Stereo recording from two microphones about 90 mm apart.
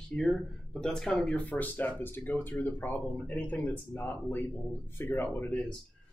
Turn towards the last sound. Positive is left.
turn(degrees=25)  # may be behind; listen again after turning